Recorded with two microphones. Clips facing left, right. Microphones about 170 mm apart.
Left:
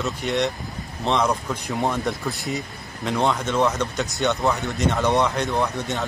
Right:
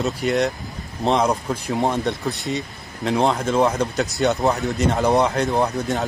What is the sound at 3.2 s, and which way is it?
Speech, 35° right (ahead or behind).